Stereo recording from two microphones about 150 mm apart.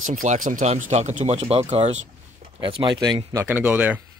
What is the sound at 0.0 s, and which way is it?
Speech, 55° right (ahead or behind).